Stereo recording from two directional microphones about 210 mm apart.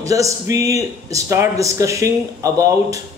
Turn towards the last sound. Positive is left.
turn(degrees=-15)  # may be behind; listen again after turning